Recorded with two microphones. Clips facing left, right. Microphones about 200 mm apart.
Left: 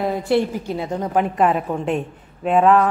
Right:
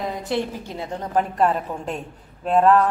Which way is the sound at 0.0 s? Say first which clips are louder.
Left 7 dB; 60° left (ahead or behind).